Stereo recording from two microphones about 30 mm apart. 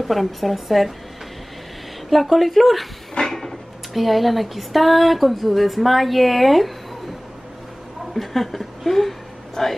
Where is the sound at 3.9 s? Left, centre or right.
Centre.